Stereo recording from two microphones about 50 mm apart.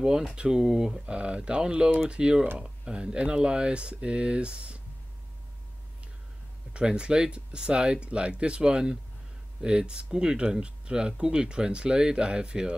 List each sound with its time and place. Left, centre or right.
0.0 s speech: centre
1.0 s speech: right
6.7 s speech: centre